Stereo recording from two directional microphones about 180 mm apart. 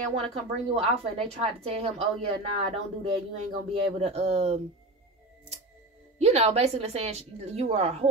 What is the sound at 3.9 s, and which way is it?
Speech, 35° right (ahead or behind).